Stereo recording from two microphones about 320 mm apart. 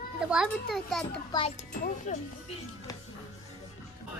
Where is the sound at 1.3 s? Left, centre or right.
Centre.